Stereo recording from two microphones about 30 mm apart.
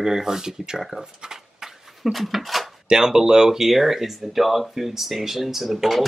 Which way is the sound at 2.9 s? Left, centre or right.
Right.